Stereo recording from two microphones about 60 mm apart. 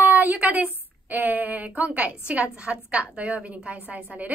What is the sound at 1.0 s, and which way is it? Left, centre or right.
A woman's voice, right.